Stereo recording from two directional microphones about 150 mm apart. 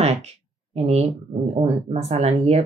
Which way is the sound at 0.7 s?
45° right (ahead or behind).